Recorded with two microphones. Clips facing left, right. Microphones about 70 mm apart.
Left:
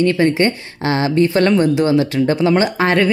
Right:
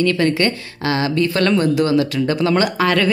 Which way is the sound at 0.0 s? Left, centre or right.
Left.